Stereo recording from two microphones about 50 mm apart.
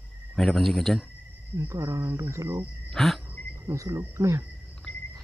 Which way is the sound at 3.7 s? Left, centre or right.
Right.